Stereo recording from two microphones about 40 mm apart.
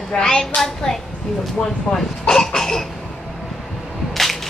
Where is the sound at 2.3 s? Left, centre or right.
Centre.